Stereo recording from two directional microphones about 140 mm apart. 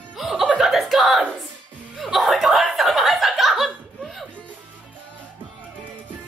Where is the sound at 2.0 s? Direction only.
Centre (ahead or behind).